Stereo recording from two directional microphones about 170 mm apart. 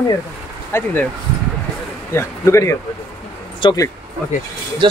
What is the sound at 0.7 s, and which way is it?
Speech, 10° left (ahead or behind).